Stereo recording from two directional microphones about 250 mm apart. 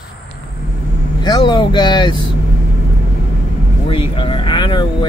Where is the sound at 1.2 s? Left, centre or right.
Centre.